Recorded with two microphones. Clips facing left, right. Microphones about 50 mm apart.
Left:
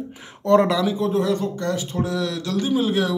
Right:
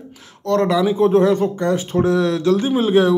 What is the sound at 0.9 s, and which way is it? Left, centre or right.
Speech, right.